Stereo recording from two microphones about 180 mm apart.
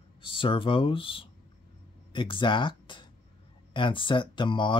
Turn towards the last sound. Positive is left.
turn(degrees=25)  # may be behind; listen again after turning